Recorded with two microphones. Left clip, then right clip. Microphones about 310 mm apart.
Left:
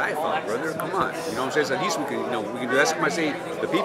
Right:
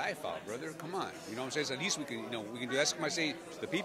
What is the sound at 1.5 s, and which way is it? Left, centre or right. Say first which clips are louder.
Speech: left 11 dB; right.